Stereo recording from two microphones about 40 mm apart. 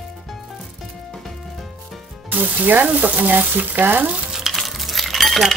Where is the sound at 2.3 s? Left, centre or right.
Right.